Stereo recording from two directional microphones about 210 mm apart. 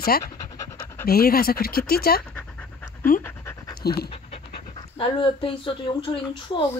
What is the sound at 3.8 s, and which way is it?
Speech, 50° left (ahead or behind).